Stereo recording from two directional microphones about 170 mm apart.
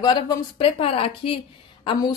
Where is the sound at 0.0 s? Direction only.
30° left (ahead or behind).